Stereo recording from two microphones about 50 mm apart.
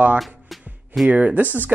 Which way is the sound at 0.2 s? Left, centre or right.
Centre.